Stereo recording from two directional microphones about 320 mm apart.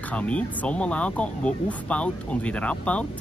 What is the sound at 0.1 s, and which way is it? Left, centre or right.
Speech, centre.